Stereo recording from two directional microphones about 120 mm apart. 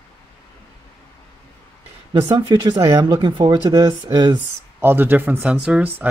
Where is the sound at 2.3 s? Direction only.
35° right (ahead or behind).